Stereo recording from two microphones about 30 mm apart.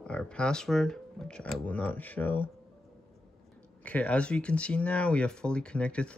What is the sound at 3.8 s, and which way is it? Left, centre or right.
Speech, left.